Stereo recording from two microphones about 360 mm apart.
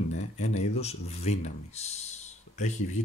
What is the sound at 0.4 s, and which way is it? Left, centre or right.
Speech, centre.